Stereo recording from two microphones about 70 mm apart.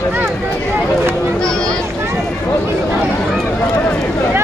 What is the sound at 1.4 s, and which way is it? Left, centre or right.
Speech, centre.